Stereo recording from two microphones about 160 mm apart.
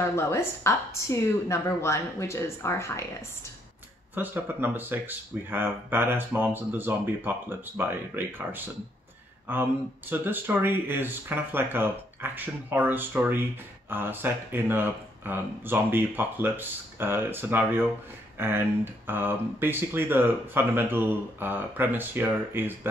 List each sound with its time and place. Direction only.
0.0 s a woman's voice: 15° left (ahead or behind)
4.1 s speech: 10° right (ahead or behind)